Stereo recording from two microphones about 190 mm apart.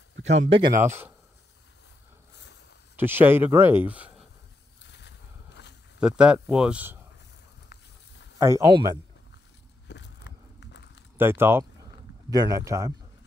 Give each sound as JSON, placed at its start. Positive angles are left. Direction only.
{"t": 0.3, "sound": "speech", "side_deg": -35}
{"t": 0.7, "sound": "speech", "side_deg": -10}
{"t": 3.0, "sound": "speech", "side_deg": -10}
{"t": 4.8, "sound": "a sound", "side_deg": 65}
{"t": 5.9, "sound": "speech", "side_deg": -5}
{"t": 7.7, "sound": "a sound", "side_deg": 60}
{"t": 8.4, "sound": "speech", "side_deg": -15}
{"t": 9.8, "sound": "a sound", "side_deg": 65}
{"t": 11.1, "sound": "speech", "side_deg": -10}